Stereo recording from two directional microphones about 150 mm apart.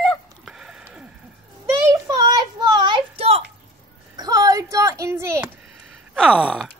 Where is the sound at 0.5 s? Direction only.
5° right (ahead or behind).